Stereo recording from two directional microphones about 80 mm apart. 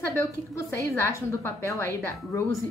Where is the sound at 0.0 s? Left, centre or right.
Left.